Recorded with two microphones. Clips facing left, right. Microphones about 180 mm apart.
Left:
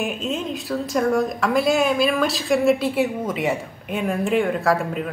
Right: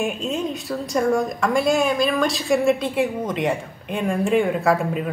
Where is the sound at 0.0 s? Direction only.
Centre (ahead or behind).